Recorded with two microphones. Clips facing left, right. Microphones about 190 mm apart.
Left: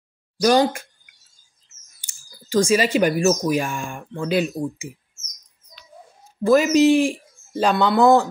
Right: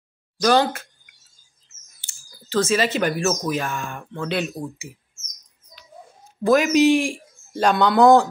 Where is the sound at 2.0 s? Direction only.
15° left (ahead or behind).